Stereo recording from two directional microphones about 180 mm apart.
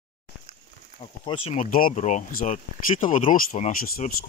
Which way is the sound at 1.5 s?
45° left (ahead or behind).